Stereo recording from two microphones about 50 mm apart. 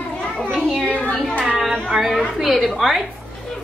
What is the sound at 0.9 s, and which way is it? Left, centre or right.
Speech, left.